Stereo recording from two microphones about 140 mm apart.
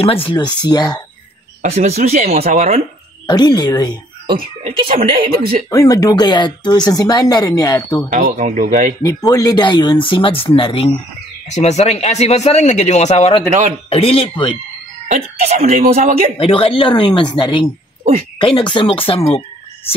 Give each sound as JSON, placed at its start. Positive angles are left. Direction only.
{"t": 0.0, "sound": "speech", "side_deg": 40}
{"t": 1.6, "sound": "speech", "side_deg": -50}
{"t": 3.3, "sound": "speech", "side_deg": 30}
{"t": 4.3, "sound": "speech", "side_deg": -40}
{"t": 5.7, "sound": "speech", "side_deg": 25}
{"t": 8.1, "sound": "speech", "side_deg": -65}
{"t": 9.3, "sound": "speech", "side_deg": 25}
{"t": 11.4, "sound": "speech", "side_deg": 55}
{"t": 13.5, "sound": "a man's voice", "side_deg": -65}
{"t": 13.8, "sound": "speech", "side_deg": 45}
{"t": 15.0, "sound": "speech", "side_deg": -50}
{"t": 16.3, "sound": "speech", "side_deg": 40}